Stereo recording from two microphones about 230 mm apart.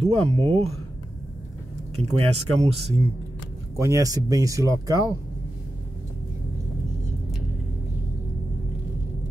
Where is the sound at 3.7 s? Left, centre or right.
Centre.